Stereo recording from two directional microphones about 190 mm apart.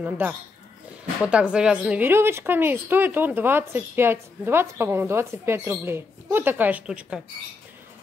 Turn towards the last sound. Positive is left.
turn(degrees=-5)  # may be behind; listen again after turning